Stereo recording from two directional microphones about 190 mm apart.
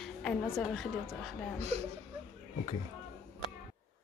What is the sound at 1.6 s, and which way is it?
Speech, 35° right (ahead or behind).